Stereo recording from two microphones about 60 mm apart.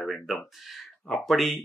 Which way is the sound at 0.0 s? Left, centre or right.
Centre.